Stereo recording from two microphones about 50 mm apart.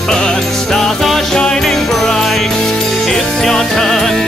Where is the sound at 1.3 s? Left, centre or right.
Centre.